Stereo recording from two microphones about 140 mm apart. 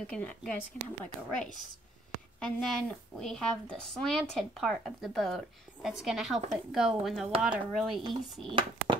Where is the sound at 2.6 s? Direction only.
5° left (ahead or behind).